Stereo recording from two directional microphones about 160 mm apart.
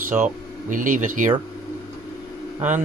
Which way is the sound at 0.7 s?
55° right (ahead or behind).